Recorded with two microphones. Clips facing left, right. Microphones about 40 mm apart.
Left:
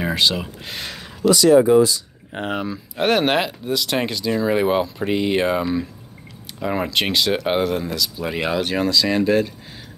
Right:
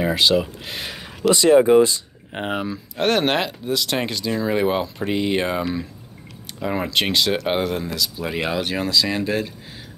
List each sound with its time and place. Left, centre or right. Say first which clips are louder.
0.0 s speech: right 2 dB; centre
1.3 s speech: even; right
2.4 s speech: even; centre
3.0 s speech: left 1 dB; centre